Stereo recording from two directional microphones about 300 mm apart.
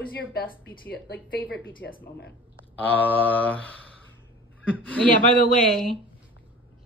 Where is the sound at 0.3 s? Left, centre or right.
Left.